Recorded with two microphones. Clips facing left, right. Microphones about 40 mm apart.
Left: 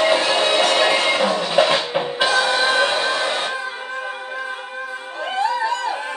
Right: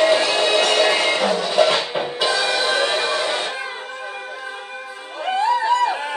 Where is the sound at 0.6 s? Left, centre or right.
Left.